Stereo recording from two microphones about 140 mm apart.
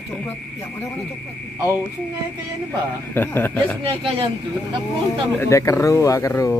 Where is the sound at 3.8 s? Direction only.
40° right (ahead or behind).